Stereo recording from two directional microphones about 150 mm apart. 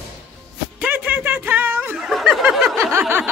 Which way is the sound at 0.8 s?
15° right (ahead or behind).